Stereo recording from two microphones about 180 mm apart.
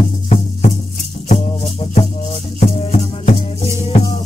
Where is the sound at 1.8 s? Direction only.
30° left (ahead or behind).